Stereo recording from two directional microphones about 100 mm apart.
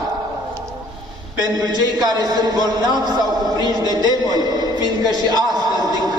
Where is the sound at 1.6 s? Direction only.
45° right (ahead or behind).